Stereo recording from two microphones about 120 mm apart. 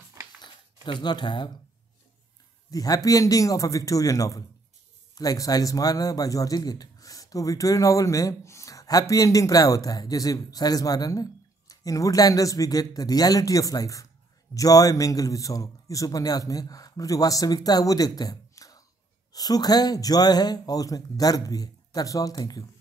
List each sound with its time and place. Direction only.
0.2 s a sound: 25° right (ahead or behind)
0.8 s speech: 40° left (ahead or behind)
2.7 s speech: 30° left (ahead or behind)